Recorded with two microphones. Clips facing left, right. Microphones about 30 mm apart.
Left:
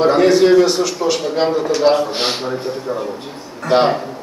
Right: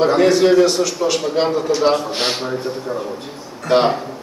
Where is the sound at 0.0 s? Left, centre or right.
Centre.